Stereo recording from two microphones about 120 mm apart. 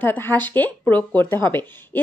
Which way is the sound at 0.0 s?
15° left (ahead or behind).